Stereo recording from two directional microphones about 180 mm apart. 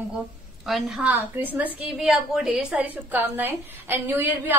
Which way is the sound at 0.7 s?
Centre (ahead or behind).